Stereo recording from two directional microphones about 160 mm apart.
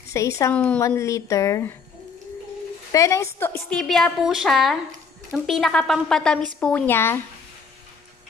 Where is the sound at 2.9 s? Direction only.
20° left (ahead or behind).